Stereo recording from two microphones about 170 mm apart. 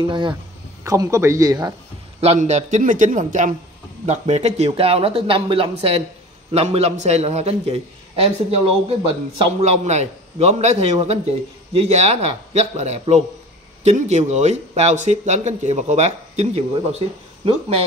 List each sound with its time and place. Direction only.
0.0 s speech: 30° right (ahead or behind)
2.1 s a man's voice: 40° right (ahead or behind)